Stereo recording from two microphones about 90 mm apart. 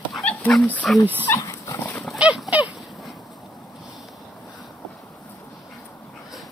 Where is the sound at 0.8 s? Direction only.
5° left (ahead or behind).